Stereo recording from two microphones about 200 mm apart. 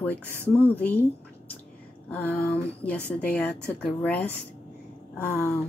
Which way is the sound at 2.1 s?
5° left (ahead or behind).